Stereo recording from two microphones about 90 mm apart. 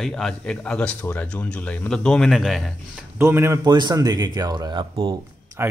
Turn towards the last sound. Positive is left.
turn(degrees=-25)  # may be behind; listen again after turning